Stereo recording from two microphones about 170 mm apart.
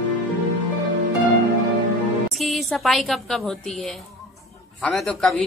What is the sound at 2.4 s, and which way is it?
A woman's voice, centre (ahead or behind).